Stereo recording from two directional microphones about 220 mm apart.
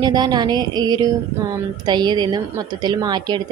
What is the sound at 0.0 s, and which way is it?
A woman's voice, 20° right (ahead or behind).